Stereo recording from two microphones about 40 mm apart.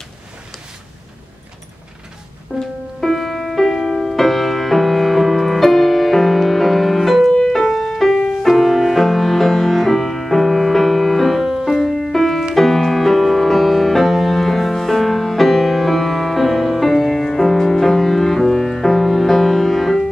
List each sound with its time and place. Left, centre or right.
2.5 s music: left
3.0 s music: centre